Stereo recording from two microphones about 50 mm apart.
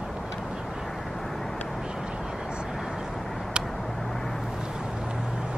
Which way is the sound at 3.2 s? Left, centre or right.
Centre.